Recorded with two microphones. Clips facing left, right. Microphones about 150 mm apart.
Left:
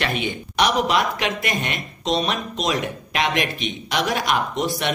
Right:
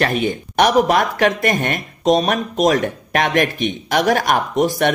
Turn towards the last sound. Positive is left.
turn(degrees=-50)  # may be behind; listen again after turning